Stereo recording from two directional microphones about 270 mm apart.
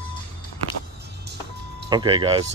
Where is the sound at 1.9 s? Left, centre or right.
Centre.